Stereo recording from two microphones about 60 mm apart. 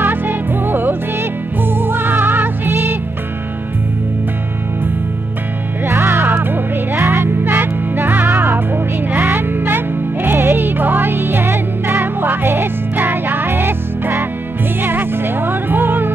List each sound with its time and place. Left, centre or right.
0.0 s music: right
5.9 s music: right